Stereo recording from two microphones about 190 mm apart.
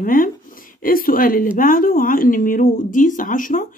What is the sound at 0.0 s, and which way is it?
Speech, 45° left (ahead or behind).